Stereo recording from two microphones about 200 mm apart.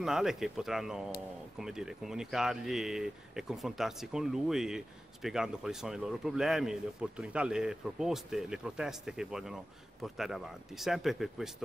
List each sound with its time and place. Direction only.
0.0 s speech: centre (ahead or behind)